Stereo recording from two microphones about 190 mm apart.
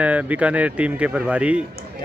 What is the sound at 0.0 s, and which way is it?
Speech, 5° right (ahead or behind).